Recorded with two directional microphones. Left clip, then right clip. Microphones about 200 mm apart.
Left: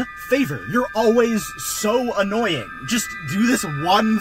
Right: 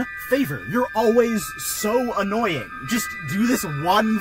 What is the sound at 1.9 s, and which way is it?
Speech, 15° left (ahead or behind).